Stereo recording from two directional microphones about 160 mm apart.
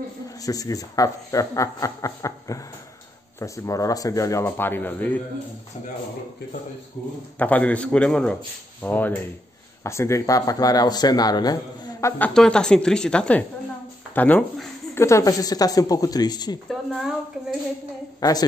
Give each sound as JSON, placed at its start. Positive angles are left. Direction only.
{"t": 0.4, "sound": "speech", "side_deg": 20}
{"t": 7.3, "sound": "a man's voice", "side_deg": 10}
{"t": 12.2, "sound": "a woman's voice", "side_deg": 5}
{"t": 16.6, "sound": "a woman's voice", "side_deg": 0}
{"t": 18.2, "sound": "speech", "side_deg": 25}